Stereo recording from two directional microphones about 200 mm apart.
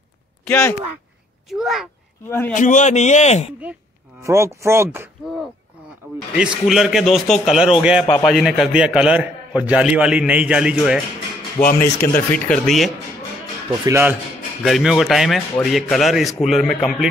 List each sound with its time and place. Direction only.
0.5 s speech: 10° left (ahead or behind)
1.5 s a man's voice: centre (ahead or behind)
2.2 s speech: 10° left (ahead or behind)
2.5 s a man's voice: 40° left (ahead or behind)
4.2 s a man's voice: 15° right (ahead or behind)
11.6 s speech: 45° left (ahead or behind)
12.4 s a man's voice: centre (ahead or behind)
13.8 s speech: 15° right (ahead or behind)
14.6 s a man's voice: centre (ahead or behind)